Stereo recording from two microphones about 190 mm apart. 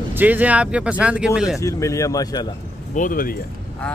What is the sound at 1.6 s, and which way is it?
Speech, 15° left (ahead or behind).